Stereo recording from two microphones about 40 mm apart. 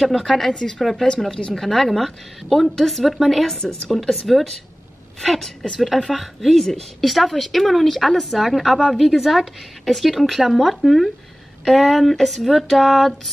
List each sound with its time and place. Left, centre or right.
0.0 s a woman's voice: centre
0.5 s a woman's voice: centre
0.7 s a woman's voice: centre